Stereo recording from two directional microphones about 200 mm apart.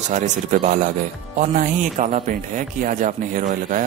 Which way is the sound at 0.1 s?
40° right (ahead or behind).